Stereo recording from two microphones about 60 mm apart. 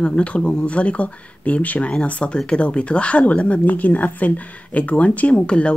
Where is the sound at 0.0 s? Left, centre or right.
Centre.